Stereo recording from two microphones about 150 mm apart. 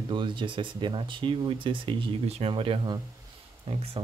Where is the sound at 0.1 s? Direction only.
35° right (ahead or behind).